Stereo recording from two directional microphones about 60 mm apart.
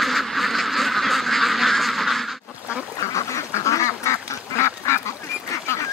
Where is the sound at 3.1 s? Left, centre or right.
Left.